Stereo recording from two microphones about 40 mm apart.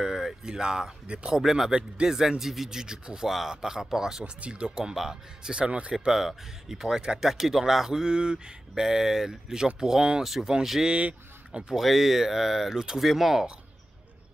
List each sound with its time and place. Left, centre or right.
0.0 s a sound: centre
1.0 s a man's voice: right
1.3 s speech: centre
1.7 s speech: right
2.0 s speech: centre
4.2 s speech: right
6.1 s speech: centre
8.1 s speech: right
10.2 s speech: centre
10.9 s speech: right
11.7 s speech: centre